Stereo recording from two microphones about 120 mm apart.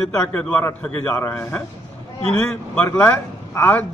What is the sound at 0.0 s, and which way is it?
A man's voice, 5° left (ahead or behind).